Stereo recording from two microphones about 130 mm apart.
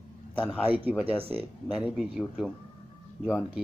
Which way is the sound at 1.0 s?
45° right (ahead or behind).